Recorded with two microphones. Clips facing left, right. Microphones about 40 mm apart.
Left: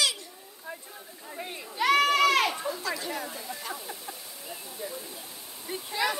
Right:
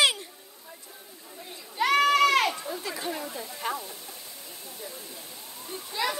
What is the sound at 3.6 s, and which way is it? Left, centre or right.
Waterfall, right.